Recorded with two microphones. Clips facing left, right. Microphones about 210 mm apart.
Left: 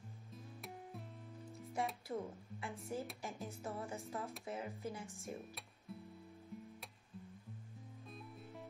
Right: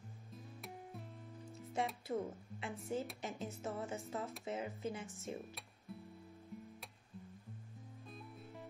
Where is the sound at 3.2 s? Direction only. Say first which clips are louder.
Right 2 dB; 20° right (ahead or behind).